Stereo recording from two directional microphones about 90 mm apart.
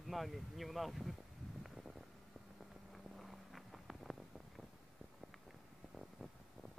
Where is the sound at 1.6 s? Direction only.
Centre (ahead or behind).